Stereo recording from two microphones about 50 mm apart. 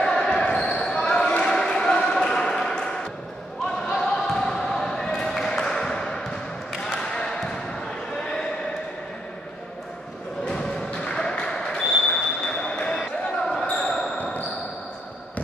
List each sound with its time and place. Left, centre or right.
0.0 s basketball bounce: centre
10.4 s music: centre
11.3 s a sound: centre
11.8 s basketball bounce: centre